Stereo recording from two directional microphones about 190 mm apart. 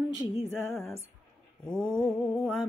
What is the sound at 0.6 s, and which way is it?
Music, 15° left (ahead or behind).